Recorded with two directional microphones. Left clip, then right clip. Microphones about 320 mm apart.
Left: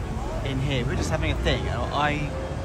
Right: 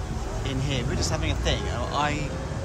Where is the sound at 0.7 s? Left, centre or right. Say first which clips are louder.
Left 1 dB; centre.